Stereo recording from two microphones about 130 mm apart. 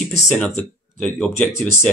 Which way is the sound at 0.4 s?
10° left (ahead or behind).